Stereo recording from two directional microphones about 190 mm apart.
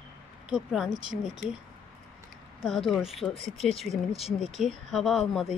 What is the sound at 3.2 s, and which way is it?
Speech, centre (ahead or behind).